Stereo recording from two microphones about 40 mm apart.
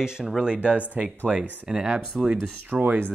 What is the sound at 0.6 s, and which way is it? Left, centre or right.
Speech, right.